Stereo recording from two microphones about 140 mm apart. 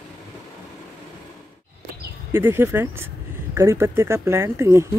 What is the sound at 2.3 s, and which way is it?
Speech, 15° right (ahead or behind).